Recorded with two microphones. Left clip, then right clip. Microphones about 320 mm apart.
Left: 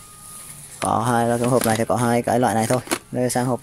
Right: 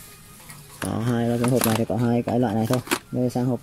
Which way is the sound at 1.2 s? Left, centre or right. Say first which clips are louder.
Left 4 dB; left.